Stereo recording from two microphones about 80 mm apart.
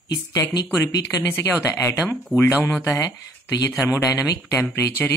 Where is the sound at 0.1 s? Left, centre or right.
Left.